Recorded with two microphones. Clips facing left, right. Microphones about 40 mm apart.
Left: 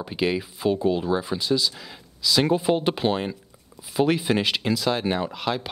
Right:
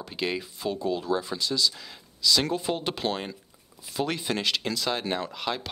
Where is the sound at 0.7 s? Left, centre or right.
Left.